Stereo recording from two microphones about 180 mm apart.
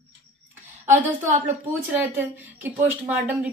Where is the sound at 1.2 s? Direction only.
15° right (ahead or behind).